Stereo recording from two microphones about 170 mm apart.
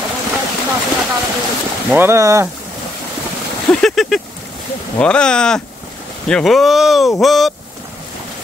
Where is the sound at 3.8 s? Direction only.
Centre (ahead or behind).